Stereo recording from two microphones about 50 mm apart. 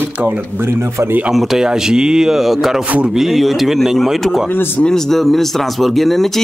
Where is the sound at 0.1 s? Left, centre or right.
Right.